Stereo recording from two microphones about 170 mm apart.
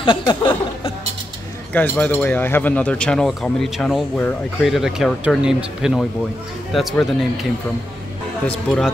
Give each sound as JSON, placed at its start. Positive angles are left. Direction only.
{"t": 0.0, "sound": "speech", "side_deg": 30}
{"t": 1.7, "sound": "speech", "side_deg": 10}
{"t": 8.5, "sound": "speech", "side_deg": 5}